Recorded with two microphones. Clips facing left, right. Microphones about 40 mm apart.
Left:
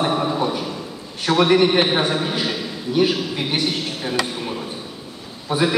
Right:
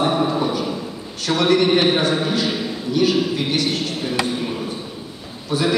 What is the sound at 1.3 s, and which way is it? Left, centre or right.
A man's voice, centre.